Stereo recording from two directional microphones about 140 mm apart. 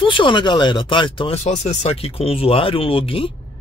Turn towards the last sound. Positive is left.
turn(degrees=40)  # may be behind; listen again after turning